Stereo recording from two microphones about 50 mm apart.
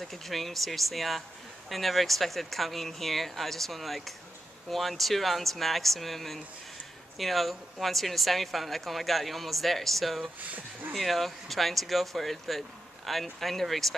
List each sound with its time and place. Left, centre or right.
0.0 s speech: centre
10.4 s speech: right
10.9 s speech: centre